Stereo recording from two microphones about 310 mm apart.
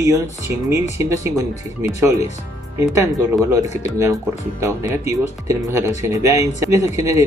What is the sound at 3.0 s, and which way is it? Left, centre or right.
Speech, centre.